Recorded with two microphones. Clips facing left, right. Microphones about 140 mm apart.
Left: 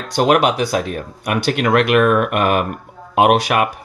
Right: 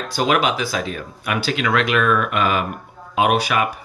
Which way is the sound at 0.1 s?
60° left (ahead or behind).